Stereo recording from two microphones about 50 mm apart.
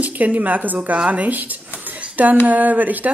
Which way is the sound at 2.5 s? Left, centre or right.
Right.